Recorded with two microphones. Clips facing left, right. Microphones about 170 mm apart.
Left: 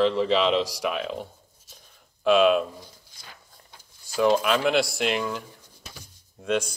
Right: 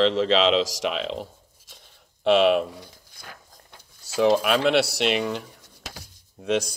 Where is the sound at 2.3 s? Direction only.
70° right (ahead or behind); by 3.7 s 55° right (ahead or behind).